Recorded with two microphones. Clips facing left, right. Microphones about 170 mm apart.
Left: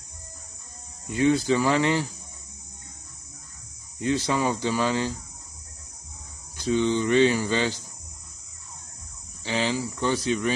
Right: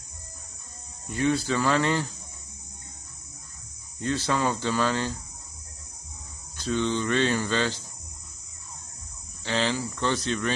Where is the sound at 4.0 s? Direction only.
15° left (ahead or behind).